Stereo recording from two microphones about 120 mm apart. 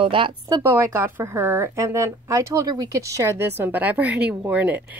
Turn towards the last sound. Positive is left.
turn(degrees=-15)  # may be behind; listen again after turning